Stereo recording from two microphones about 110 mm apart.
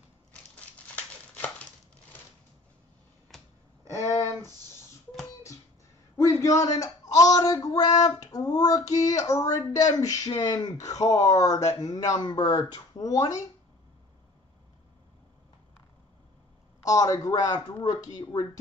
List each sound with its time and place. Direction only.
0.3 s crumpling: 10° left (ahead or behind)
3.3 s finger snapping: centre (ahead or behind)
6.1 s a sound: 25° left (ahead or behind)
6.6 s speech: 30° left (ahead or behind)
16.8 s speech: 30° left (ahead or behind)